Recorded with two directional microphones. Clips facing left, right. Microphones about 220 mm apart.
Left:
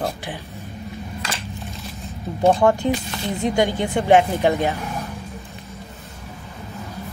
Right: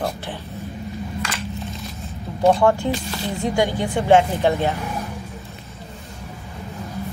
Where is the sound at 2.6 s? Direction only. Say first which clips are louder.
Left 1 dB; 20° left (ahead or behind).